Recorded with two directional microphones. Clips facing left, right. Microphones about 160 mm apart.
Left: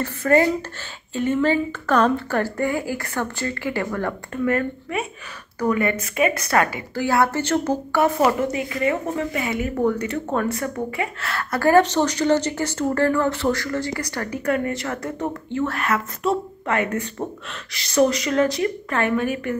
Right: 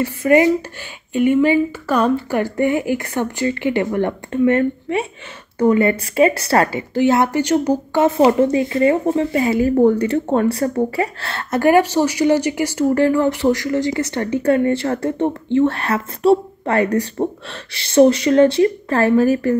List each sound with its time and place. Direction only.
0.0 s speech: 15° right (ahead or behind)
2.4 s speech: 20° right (ahead or behind)
6.9 s speech: 20° right (ahead or behind); by 19.5 s 35° right (ahead or behind)